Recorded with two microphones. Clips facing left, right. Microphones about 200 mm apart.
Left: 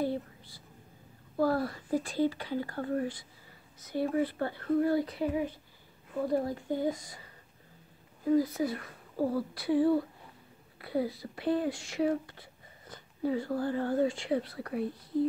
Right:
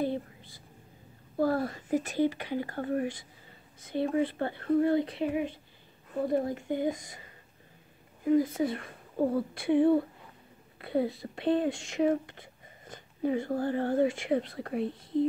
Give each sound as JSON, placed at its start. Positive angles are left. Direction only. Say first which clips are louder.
{"t": 0.0, "sound": "a sound", "louder": "right 1 dB", "side_deg": -20}
{"t": 1.3, "sound": "a child's voice", "louder": "right 1 dB", "side_deg": -45}
{"t": 1.9, "sound": "speech", "louder": "right 2 dB", "side_deg": -20}
{"t": 3.8, "sound": "speech", "louder": "right 1 dB", "side_deg": -20}
{"t": 12.3, "sound": "a sound", "louder": "right 2 dB", "side_deg": -25}
{"t": 13.5, "sound": "speech", "louder": "right 2 dB", "side_deg": -55}
{"t": 13.9, "sound": "speech", "louder": "right 3 dB", "side_deg": -20}